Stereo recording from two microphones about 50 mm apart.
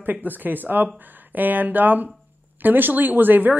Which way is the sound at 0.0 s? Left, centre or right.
Right.